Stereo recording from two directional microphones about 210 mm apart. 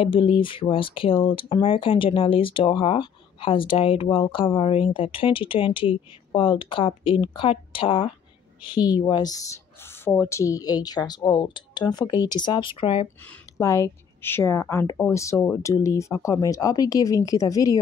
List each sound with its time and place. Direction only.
0.0 s speech: 25° left (ahead or behind)
13.6 s a woman's voice: 15° left (ahead or behind)